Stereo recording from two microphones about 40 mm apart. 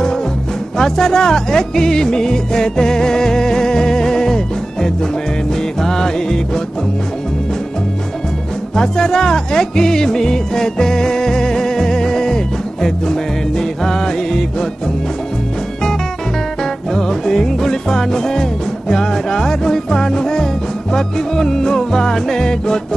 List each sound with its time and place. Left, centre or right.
0.7 s music: centre
5.8 s music: centre
8.7 s music: centre
16.9 s music: centre